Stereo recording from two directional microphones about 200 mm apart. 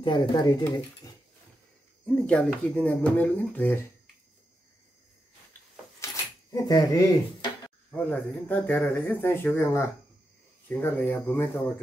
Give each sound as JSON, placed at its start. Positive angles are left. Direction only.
{"t": 0.0, "sound": "speech", "side_deg": 25}
{"t": 2.2, "sound": "speech", "side_deg": 5}
{"t": 6.0, "sound": "a sound", "side_deg": 15}
{"t": 6.5, "sound": "speech", "side_deg": 20}
{"t": 7.9, "sound": "speech", "side_deg": 10}